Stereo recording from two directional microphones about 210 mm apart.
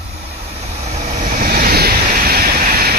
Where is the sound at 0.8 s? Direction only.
35° right (ahead or behind).